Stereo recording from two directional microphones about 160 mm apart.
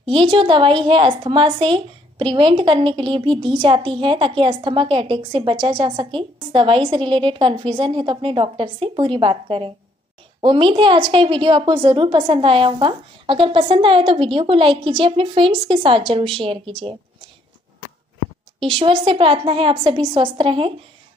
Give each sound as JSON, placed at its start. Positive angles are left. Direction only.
{"t": 0.0, "sound": "a woman's voice", "side_deg": -30}
{"t": 18.6, "sound": "a woman's voice", "side_deg": -35}